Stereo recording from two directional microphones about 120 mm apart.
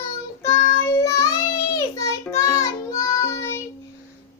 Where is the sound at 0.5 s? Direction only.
25° left (ahead or behind).